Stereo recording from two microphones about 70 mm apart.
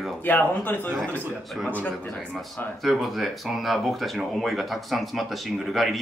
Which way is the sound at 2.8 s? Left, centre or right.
Centre.